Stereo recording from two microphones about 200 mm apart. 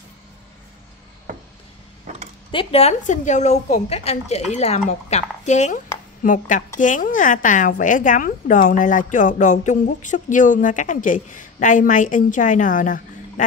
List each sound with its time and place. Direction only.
2.5 s a woman's voice: 30° left (ahead or behind)